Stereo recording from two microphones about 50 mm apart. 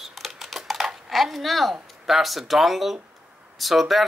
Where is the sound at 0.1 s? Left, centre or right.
Centre.